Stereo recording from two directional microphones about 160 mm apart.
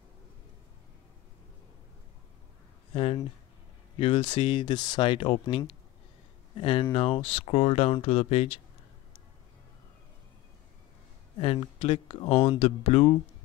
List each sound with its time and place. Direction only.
2.9 s speech: 35° left (ahead or behind)
11.3 s speech: 35° left (ahead or behind)